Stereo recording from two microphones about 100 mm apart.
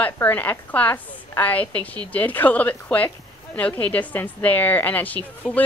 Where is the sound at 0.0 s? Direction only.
15° left (ahead or behind).